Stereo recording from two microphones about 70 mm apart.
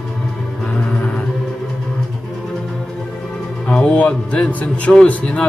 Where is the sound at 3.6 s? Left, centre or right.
Centre.